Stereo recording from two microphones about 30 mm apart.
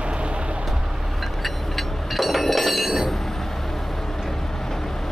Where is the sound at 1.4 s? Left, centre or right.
Centre.